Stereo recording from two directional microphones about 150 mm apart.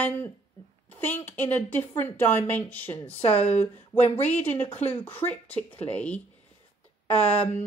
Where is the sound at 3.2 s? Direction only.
45° left (ahead or behind).